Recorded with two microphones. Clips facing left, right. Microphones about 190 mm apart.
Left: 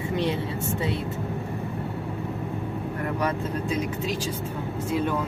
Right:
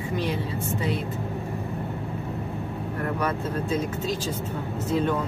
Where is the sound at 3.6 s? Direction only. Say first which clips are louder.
Right 2 dB; 15° left (ahead or behind).